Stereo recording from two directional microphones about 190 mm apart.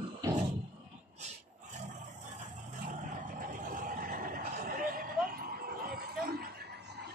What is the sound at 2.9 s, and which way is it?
Vehicle, 45° right (ahead or behind).